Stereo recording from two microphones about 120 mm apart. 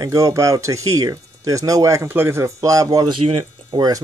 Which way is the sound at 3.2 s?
50° right (ahead or behind).